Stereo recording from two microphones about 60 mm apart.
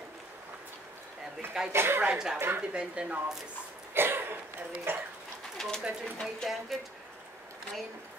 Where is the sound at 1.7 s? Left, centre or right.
Right.